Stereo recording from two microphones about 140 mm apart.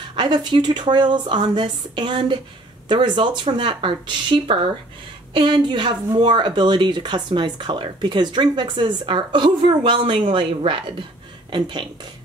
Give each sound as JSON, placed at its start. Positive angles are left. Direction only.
{"t": 0.1, "sound": "a woman's voice", "side_deg": -35}